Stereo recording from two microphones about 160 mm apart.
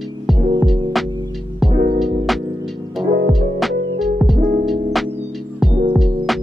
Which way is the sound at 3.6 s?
Centre (ahead or behind).